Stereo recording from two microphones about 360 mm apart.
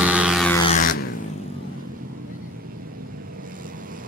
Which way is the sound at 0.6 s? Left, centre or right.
Centre.